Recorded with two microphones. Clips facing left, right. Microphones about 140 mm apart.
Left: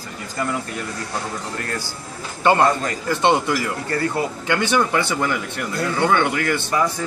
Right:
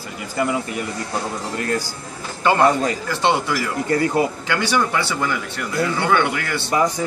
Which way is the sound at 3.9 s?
15° right (ahead or behind).